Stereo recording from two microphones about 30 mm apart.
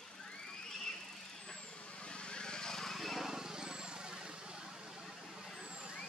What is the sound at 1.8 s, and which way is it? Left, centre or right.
Vehicle, left.